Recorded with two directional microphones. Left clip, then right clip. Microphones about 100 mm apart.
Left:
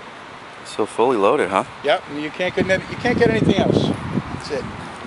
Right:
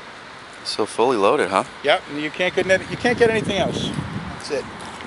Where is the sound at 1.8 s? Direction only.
30° right (ahead or behind).